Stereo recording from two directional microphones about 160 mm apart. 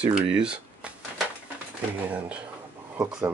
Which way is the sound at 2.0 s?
10° right (ahead or behind).